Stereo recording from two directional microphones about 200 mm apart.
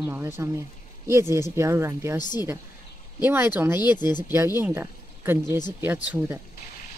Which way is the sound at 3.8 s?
20° left (ahead or behind).